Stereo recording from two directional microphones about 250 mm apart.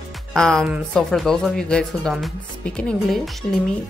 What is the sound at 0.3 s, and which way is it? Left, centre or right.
A woman's voice, centre.